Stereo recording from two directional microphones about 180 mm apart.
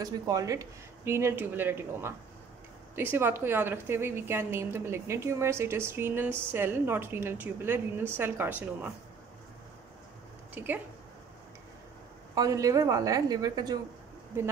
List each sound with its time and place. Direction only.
0.0 s a woman's voice: 20° right (ahead or behind)
12.4 s a woman's voice: 20° right (ahead or behind)